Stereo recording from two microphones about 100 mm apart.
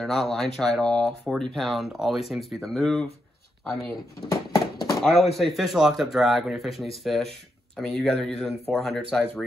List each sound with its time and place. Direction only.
0.0 s speech: centre (ahead or behind)
4.3 s horse: 40° left (ahead or behind)
4.9 s speech: centre (ahead or behind)